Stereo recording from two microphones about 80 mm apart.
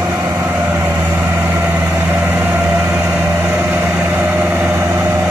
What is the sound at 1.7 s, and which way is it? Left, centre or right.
Vehicle, right.